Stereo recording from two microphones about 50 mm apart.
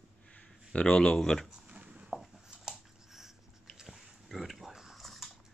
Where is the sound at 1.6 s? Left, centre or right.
Right.